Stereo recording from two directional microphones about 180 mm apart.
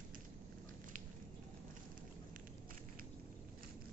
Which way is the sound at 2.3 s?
50° right (ahead or behind).